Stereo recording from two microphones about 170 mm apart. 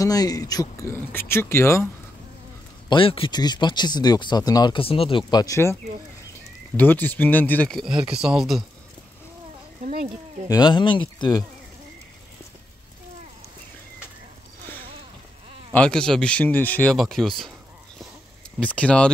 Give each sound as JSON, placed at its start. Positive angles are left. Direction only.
{"t": 0.0, "sound": "speech", "side_deg": 20}
{"t": 2.9, "sound": "speech", "side_deg": 30}
{"t": 6.8, "sound": "speech", "side_deg": 10}
{"t": 10.5, "sound": "speech", "side_deg": 25}
{"t": 15.7, "sound": "speech", "side_deg": 5}
{"t": 18.6, "sound": "speech", "side_deg": 5}